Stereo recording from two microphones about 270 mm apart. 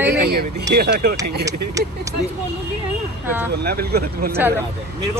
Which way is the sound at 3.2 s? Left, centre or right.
Centre.